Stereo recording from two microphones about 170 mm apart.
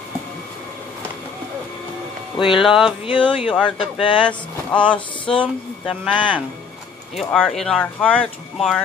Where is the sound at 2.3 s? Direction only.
30° left (ahead or behind).